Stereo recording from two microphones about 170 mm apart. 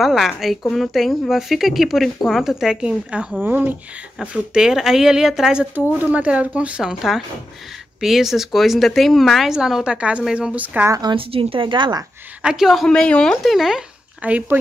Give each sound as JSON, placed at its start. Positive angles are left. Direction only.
{"t": 0.0, "sound": "speech", "side_deg": 0}
{"t": 11.0, "sound": "speech", "side_deg": -30}
{"t": 12.4, "sound": "speech", "side_deg": -5}